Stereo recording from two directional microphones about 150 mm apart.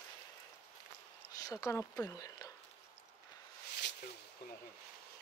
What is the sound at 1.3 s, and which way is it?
Speech, 25° left (ahead or behind).